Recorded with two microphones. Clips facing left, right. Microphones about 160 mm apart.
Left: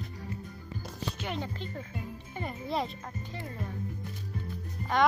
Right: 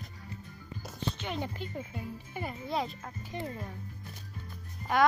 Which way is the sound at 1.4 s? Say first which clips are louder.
Right 1 dB; 15° right (ahead or behind).